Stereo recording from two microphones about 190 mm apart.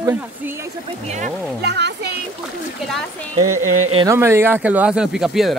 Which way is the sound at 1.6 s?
65° right (ahead or behind).